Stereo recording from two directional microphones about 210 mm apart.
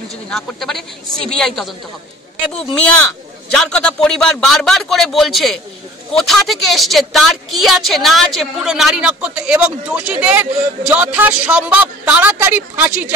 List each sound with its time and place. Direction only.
0.3 s a woman's voice: centre (ahead or behind)
3.5 s a woman's voice: 5° left (ahead or behind)